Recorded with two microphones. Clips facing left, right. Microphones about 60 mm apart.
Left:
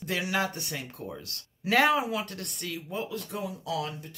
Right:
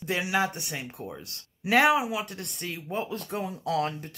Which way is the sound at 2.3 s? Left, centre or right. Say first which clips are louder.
Even; right.